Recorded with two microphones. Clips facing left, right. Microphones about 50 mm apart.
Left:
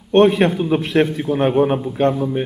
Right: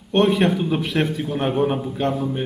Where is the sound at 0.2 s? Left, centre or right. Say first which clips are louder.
Left 4 dB; centre.